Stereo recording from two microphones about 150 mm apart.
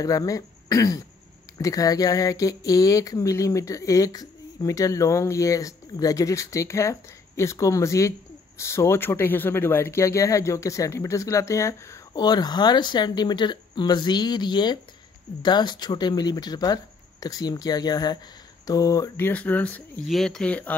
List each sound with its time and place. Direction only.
0.0 s speech: 25° left (ahead or behind)